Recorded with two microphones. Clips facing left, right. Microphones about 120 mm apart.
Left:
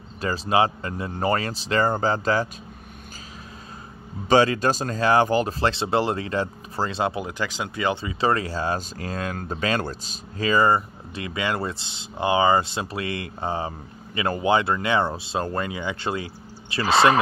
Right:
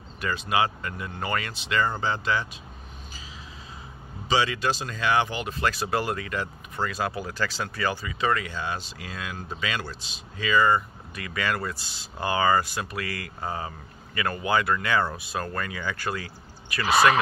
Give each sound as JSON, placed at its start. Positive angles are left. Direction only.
{"t": 0.2, "sound": "speech", "side_deg": 30}
{"t": 4.3, "sound": "speech", "side_deg": 45}